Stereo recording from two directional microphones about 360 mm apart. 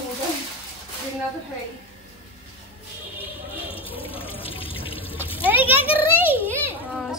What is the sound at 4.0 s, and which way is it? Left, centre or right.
Water tap, centre.